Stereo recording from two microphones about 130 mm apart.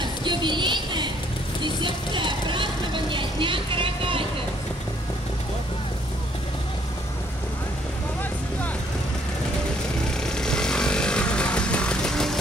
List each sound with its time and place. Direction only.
0.0 s a sound: 35° right (ahead or behind)
1.6 s vehicle: 40° right (ahead or behind)
10.2 s vehicle: 5° left (ahead or behind)